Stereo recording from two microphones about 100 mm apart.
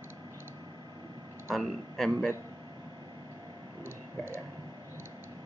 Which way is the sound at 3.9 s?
25° right (ahead or behind).